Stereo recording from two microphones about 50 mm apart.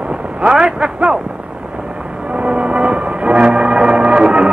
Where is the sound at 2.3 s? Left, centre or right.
Right.